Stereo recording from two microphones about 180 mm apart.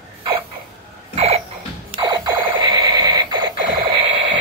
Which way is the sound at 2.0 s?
25° right (ahead or behind).